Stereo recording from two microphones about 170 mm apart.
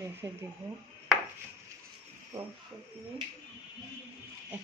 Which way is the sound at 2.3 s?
20° right (ahead or behind).